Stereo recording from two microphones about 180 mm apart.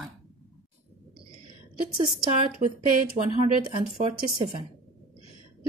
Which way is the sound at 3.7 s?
35° right (ahead or behind).